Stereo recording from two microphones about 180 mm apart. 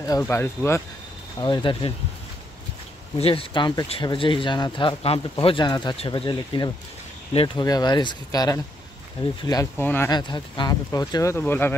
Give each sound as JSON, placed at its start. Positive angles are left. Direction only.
{"t": 0.0, "sound": "speech", "side_deg": 15}
{"t": 1.4, "sound": "speech", "side_deg": 25}
{"t": 3.2, "sound": "speech", "side_deg": 30}
{"t": 9.8, "sound": "speech", "side_deg": 10}
{"t": 10.1, "sound": "speech", "side_deg": 25}